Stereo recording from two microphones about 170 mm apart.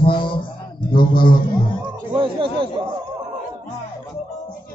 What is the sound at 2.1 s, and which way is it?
Speech, 30° right (ahead or behind).